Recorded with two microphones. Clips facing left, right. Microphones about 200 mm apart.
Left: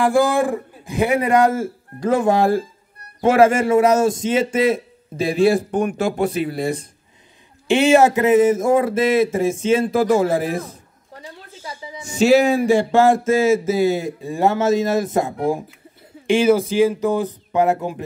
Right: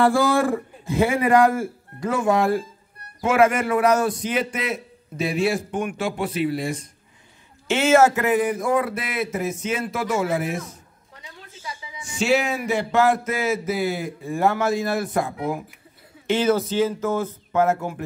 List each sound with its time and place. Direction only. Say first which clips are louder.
0.0 s speech: left 2 dB; 15° left (ahead or behind)
2.0 s a man's voice: left 4 dB; 35° left (ahead or behind)
7.6 s speech: left 3 dB; 15° left (ahead or behind)
16.3 s speech: left 5 dB; 10° left (ahead or behind)